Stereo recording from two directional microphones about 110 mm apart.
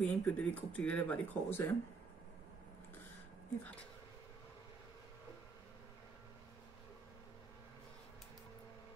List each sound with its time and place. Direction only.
0.0 s speech: 15° left (ahead or behind)